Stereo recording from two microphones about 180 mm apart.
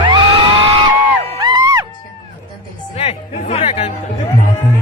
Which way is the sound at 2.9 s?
35° left (ahead or behind).